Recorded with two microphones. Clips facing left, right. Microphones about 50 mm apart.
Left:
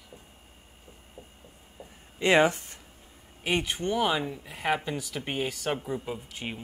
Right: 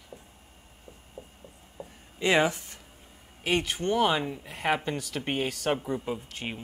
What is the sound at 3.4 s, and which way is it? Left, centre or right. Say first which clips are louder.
Speech: right 1 dB; centre.